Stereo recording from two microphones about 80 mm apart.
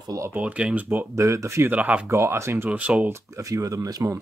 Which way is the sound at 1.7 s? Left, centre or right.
Centre.